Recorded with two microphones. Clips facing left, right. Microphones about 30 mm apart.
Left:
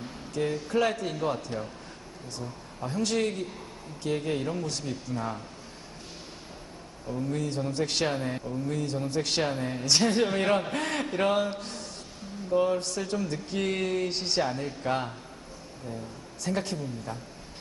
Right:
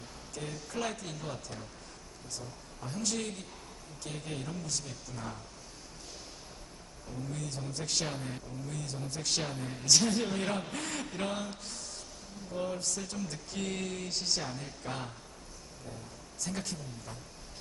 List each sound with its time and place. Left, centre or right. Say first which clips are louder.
0.0 s a man's voice: left 11 dB; left
2.8 s speech: left 8 dB; left
7.1 s speech: left 9 dB; left
16.4 s speech: left 9 dB; left